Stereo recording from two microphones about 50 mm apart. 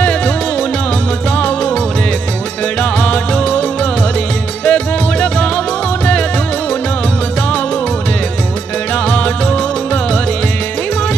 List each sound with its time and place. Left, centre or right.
0.0 s music: left
2.8 s music: left
8.9 s music: left